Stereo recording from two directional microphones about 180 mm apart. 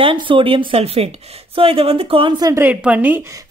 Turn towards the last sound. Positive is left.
turn(degrees=-10)  # may be behind; listen again after turning